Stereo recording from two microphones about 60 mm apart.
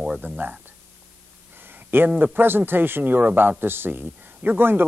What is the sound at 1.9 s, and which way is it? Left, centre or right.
Speech, right.